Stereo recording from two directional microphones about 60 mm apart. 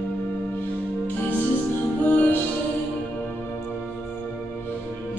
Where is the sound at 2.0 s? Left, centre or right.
Left.